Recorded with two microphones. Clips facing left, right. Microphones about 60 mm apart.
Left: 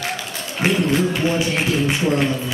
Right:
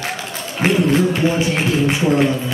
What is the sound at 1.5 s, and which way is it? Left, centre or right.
Speech, centre.